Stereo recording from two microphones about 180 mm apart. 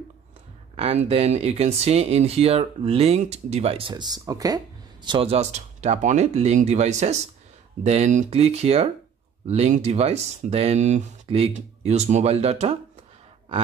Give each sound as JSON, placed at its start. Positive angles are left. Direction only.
{"t": 0.7, "sound": "speech", "side_deg": -35}
{"t": 5.0, "sound": "speech", "side_deg": -30}